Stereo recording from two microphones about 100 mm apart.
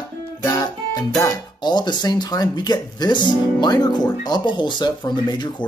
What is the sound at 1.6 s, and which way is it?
Speech, 45° left (ahead or behind).